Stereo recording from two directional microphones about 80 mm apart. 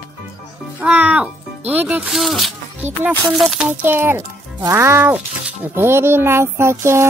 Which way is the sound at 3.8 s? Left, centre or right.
Right.